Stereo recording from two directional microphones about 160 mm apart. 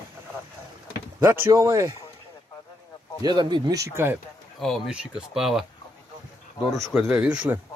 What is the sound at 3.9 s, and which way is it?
Speech, 15° right (ahead or behind).